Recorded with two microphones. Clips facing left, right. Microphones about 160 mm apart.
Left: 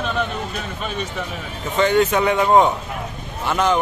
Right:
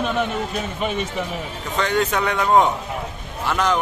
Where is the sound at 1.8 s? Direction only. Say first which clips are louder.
Left 4 dB; centre (ahead or behind).